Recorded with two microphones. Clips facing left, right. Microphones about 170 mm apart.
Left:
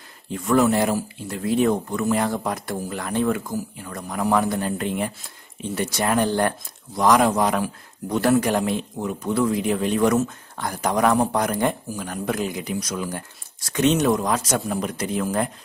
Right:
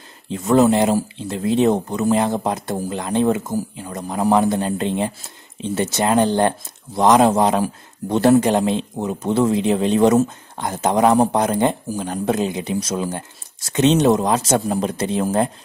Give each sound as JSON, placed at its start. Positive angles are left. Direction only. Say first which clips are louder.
{"t": 0.3, "sound": "speech", "louder": "right 4 dB", "side_deg": -20}